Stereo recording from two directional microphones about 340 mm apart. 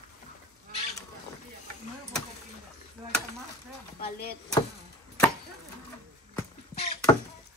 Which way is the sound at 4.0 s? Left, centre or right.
Left.